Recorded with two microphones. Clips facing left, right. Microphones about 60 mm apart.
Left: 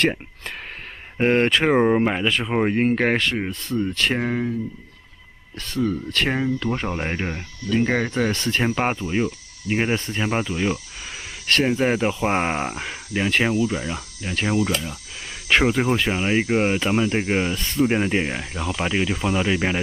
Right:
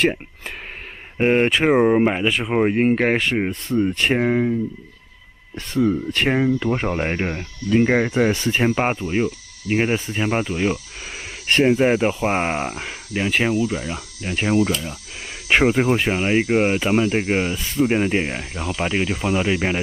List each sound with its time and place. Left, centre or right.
1.1 s speech: centre
3.3 s speech: right
5.6 s speech: centre